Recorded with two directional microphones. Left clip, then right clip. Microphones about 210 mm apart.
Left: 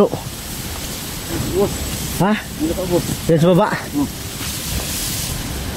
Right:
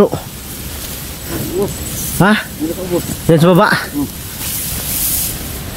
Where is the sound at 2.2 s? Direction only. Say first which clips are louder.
Right 6 dB; 30° right (ahead or behind).